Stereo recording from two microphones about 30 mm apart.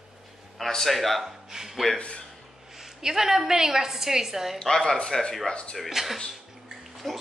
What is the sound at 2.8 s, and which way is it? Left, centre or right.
A woman's voice, centre.